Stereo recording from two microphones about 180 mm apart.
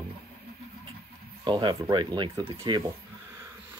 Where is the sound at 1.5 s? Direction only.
25° right (ahead or behind).